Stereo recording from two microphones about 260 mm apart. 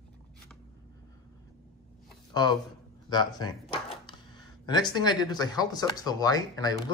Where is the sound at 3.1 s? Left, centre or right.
Centre.